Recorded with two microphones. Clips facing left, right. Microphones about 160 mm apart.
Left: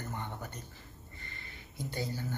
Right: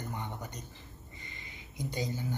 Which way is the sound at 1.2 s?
15° right (ahead or behind).